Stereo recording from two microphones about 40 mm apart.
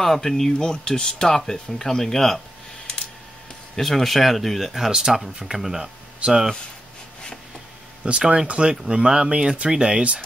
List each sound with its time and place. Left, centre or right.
0.0 s speech: centre
3.7 s speech: centre
6.2 s speech: right
8.0 s speech: right
8.8 s speech: centre